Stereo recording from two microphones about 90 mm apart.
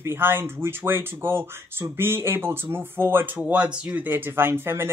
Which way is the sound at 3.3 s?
15° right (ahead or behind).